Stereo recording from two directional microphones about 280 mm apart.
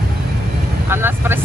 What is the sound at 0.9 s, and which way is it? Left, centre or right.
Vehicle, centre.